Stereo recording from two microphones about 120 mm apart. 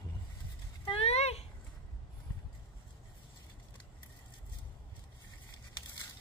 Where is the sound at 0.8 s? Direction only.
55° left (ahead or behind).